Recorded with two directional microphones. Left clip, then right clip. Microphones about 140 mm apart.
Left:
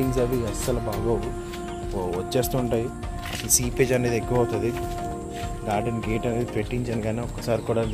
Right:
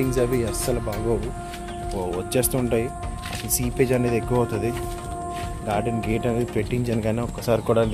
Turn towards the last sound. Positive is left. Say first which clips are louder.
# right 4 dB
turn(degrees=-30)  # may be behind; listen again after turning